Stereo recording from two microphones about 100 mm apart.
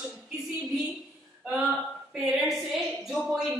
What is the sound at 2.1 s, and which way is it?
A woman's voice, 5° right (ahead or behind).